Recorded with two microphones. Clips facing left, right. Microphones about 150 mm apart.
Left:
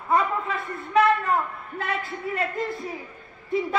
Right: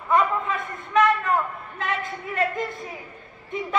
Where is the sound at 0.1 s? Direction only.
35° left (ahead or behind).